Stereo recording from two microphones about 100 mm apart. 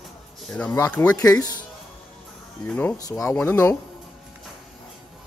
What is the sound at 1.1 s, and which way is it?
Speech, 35° left (ahead or behind).